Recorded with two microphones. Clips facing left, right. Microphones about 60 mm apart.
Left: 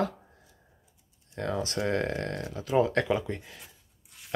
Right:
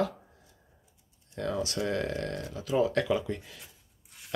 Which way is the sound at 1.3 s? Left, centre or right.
Left.